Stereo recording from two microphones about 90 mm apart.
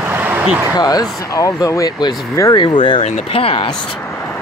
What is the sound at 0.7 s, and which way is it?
Speech, 45° left (ahead or behind).